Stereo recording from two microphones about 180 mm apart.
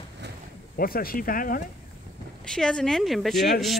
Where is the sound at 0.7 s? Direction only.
55° left (ahead or behind).